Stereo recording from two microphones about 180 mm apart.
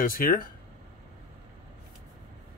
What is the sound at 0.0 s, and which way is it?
Speech, 50° left (ahead or behind).